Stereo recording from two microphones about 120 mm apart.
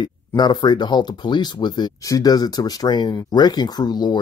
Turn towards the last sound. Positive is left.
turn(degrees=35)  # may be behind; listen again after turning